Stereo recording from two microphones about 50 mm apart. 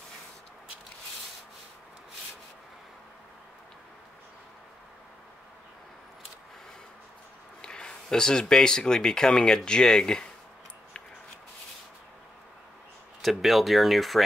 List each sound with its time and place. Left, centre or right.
7.6 s speech: centre
13.2 s speech: centre